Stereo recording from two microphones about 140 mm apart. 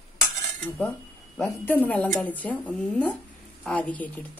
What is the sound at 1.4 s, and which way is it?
Speech, 15° left (ahead or behind).